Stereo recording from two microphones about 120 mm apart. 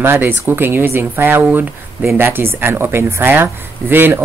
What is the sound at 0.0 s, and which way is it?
Speech, 20° right (ahead or behind).